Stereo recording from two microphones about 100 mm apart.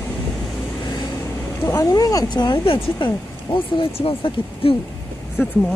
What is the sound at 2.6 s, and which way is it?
Speech, 65° left (ahead or behind).